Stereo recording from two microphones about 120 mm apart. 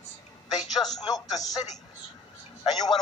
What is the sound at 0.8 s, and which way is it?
Speech, 35° left (ahead or behind).